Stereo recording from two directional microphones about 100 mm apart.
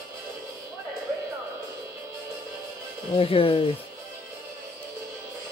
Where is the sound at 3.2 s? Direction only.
70° left (ahead or behind).